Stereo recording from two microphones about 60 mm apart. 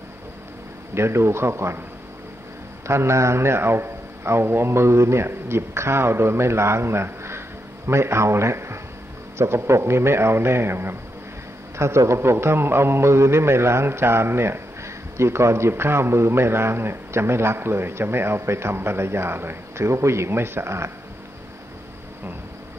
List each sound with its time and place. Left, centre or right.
0.9 s a man's voice: right
2.9 s a man's voice: right
11.8 s a man's voice: right